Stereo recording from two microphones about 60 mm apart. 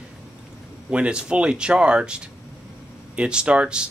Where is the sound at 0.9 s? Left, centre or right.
Centre.